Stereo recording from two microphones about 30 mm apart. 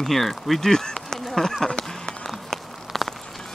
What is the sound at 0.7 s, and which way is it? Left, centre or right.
Insect, left.